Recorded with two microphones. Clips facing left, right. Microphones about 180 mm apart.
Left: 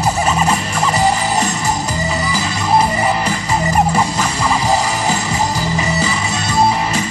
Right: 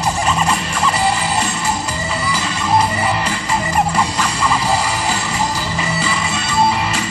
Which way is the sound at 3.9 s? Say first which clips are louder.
Left 2 dB; 20° left (ahead or behind).